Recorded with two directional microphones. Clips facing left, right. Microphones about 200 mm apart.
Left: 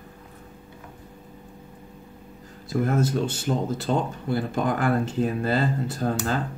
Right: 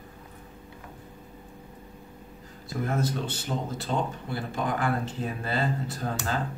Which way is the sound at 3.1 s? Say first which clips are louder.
Left 6 dB; 50° left (ahead or behind).